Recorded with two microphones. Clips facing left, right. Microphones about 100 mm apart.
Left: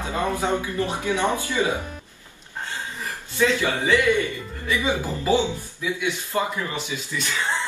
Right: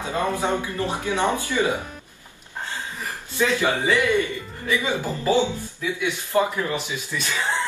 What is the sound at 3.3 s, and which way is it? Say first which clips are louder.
Speech: even; 20° right (ahead or behind).